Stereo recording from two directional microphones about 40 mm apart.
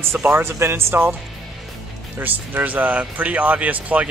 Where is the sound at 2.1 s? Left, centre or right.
Right.